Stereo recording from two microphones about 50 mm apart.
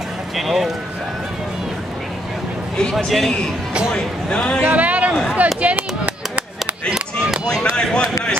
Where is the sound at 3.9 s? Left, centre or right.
Centre.